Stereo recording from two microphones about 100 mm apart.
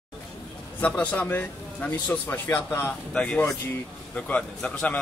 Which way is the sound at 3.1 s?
10° left (ahead or behind).